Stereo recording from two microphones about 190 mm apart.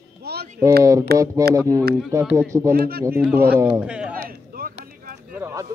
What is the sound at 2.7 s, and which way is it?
Speech, 55° right (ahead or behind).